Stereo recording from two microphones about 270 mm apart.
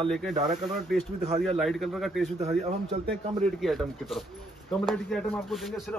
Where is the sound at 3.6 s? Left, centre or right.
Centre.